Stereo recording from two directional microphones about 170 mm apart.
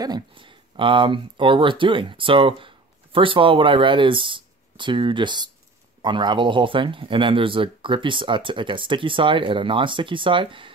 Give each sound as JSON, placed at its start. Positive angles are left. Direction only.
{"t": 0.0, "sound": "speech", "side_deg": -25}